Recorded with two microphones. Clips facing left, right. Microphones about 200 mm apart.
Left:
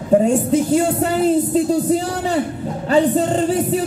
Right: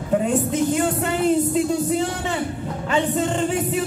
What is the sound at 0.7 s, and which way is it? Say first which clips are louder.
A man's voice: left 5 dB; 35° left (ahead or behind).